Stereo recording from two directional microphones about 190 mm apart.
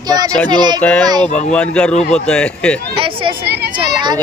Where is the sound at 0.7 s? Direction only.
10° left (ahead or behind).